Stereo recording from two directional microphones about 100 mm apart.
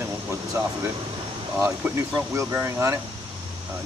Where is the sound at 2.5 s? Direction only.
25° right (ahead or behind).